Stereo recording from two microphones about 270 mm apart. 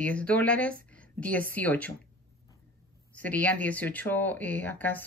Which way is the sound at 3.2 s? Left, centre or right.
Centre.